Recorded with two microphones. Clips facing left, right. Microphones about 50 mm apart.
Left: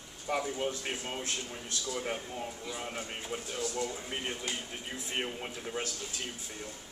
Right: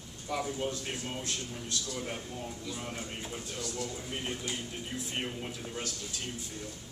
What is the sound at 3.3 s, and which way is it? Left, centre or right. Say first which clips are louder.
Speech: left 3 dB; centre.